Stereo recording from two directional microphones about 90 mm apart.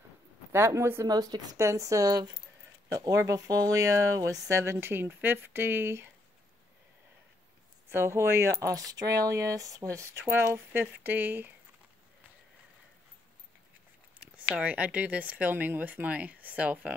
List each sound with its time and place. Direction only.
0.5 s a man's voice: 30° right (ahead or behind)
1.0 s speech: 45° right (ahead or behind); by 6.0 s 25° right (ahead or behind)
7.9 s speech: 30° right (ahead or behind)
14.2 s speech: 15° right (ahead or behind)